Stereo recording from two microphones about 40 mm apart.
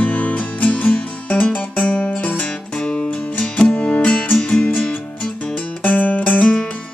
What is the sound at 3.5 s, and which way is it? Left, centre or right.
Music, left.